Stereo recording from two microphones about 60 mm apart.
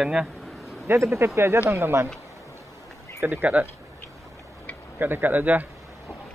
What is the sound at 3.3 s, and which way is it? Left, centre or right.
Speech, right.